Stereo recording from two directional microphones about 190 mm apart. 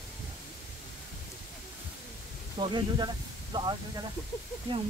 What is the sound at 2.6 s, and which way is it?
Snake, 25° right (ahead or behind).